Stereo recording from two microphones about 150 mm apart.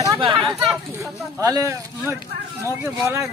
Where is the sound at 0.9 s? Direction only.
20° right (ahead or behind).